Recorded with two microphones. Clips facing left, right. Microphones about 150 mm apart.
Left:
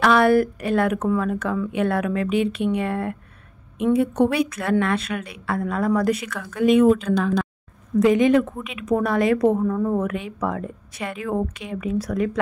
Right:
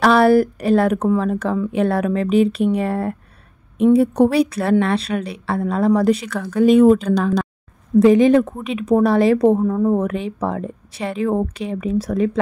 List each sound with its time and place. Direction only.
0.0 s a woman's voice: 35° right (ahead or behind)